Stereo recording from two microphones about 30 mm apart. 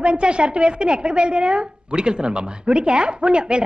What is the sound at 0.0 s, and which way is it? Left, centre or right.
A woman's voice, right.